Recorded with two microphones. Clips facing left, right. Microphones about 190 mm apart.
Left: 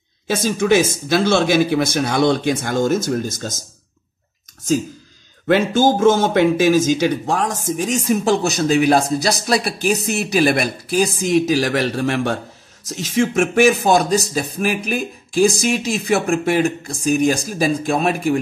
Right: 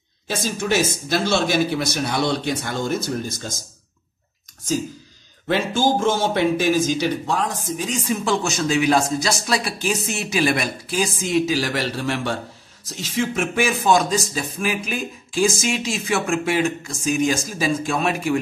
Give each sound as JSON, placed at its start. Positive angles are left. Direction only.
{"t": 0.4, "sound": "speech", "side_deg": 55}
{"t": 5.5, "sound": "speech", "side_deg": 50}